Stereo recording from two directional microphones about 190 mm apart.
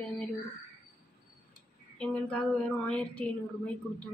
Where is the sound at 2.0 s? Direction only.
5° left (ahead or behind).